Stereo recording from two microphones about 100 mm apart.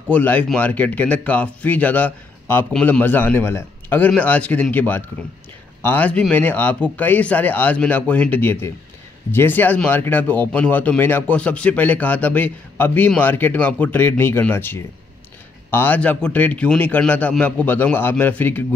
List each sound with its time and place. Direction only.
0.1 s a man's voice: 15° left (ahead or behind)